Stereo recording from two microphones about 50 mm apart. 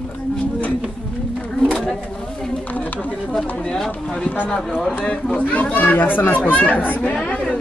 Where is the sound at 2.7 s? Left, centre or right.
Left.